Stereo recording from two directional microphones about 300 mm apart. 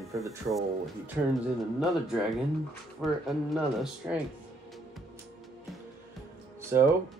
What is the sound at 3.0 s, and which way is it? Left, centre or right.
Speech, centre.